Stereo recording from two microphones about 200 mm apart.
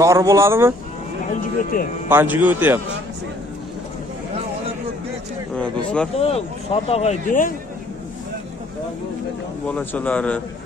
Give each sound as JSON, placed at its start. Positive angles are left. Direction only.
{"t": 0.0, "sound": "a man's voice", "side_deg": -15}
{"t": 1.2, "sound": "a sound", "side_deg": 45}
{"t": 2.0, "sound": "a man's voice", "side_deg": -10}
{"t": 5.6, "sound": "speech", "side_deg": 5}
{"t": 6.1, "sound": "speech", "side_deg": 30}
{"t": 9.7, "sound": "a man's voice", "side_deg": 5}